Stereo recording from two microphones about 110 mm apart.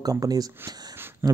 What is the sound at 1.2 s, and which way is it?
Speech, 20° right (ahead or behind).